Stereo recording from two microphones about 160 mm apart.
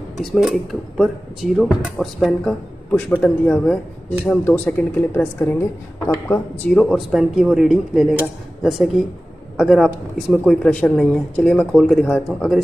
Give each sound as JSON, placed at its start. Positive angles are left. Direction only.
{"t": 0.2, "sound": "a woman's voice", "side_deg": 0}
{"t": 6.8, "sound": "speech", "side_deg": 0}